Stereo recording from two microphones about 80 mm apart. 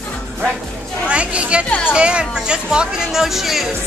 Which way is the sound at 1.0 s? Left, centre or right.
Centre.